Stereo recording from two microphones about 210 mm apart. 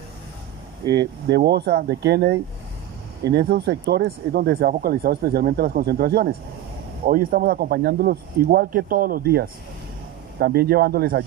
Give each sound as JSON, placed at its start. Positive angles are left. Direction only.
{"t": 0.9, "sound": "speech", "side_deg": -50}